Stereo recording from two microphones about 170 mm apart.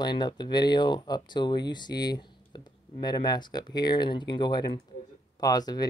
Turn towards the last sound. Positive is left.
turn(degrees=20)  # may be behind; listen again after turning